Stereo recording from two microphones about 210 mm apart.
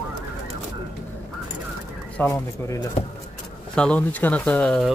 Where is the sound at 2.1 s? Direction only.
10° left (ahead or behind).